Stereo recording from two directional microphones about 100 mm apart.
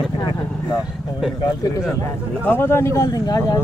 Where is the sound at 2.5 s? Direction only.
25° left (ahead or behind).